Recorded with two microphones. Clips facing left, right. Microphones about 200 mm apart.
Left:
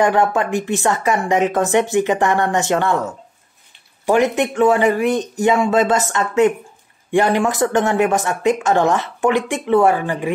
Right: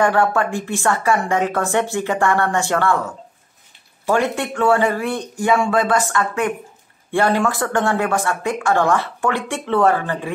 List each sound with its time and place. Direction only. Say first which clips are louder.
0.0 s speech: left 1 dB; 20° left (ahead or behind)
4.0 s speech: left 4 dB; 20° left (ahead or behind)